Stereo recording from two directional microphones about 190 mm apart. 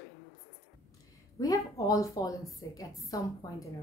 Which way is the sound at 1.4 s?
15° left (ahead or behind).